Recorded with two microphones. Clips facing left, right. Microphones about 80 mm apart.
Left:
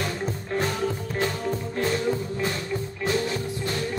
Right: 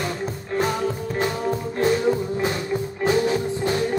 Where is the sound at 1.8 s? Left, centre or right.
Centre.